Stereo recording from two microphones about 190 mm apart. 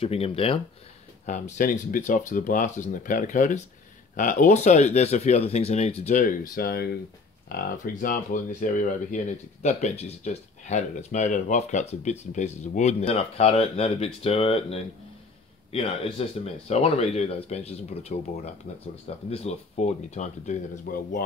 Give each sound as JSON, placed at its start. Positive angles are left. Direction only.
{"t": 0.0, "sound": "speech", "side_deg": 30}
{"t": 6.5, "sound": "speech", "side_deg": 55}